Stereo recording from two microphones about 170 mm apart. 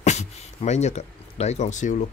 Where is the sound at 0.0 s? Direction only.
40° left (ahead or behind).